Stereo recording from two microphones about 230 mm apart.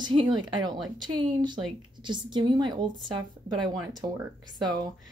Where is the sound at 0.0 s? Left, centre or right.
Centre.